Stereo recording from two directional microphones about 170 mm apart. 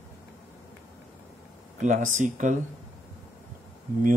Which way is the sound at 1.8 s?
45° right (ahead or behind).